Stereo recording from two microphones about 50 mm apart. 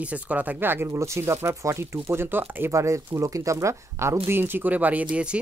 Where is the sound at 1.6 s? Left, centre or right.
Right.